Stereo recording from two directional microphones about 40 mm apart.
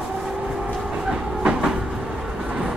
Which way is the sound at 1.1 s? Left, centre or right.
Centre.